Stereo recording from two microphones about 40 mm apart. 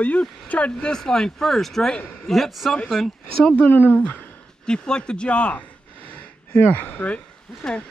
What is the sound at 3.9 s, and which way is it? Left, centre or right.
Speech, left.